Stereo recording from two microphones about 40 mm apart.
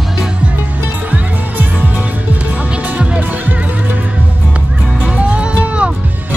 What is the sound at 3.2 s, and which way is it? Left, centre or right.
Music, right.